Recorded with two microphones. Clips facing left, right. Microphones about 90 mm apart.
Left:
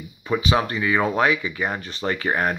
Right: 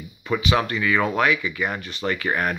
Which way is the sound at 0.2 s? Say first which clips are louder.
Left 1 dB; 25° left (ahead or behind).